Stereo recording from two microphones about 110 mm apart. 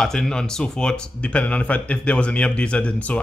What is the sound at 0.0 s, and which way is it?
Speech, 5° left (ahead or behind).